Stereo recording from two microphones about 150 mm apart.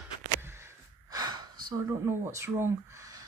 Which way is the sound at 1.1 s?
25° right (ahead or behind).